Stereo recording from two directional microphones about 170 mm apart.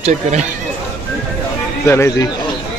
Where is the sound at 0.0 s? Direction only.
45° right (ahead or behind).